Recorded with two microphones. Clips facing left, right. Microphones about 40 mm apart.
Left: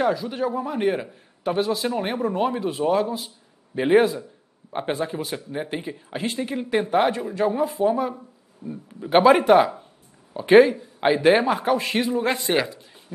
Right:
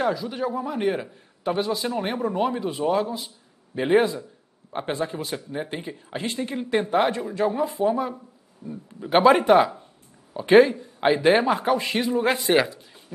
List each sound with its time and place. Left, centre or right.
0.0 s a man's voice: centre
8.6 s a man's voice: left
9.0 s speech: centre
10.3 s a man's voice: centre
12.5 s speech: centre